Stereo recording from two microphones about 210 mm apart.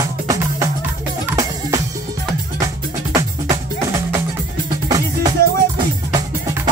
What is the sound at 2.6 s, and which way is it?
Music, 15° right (ahead or behind).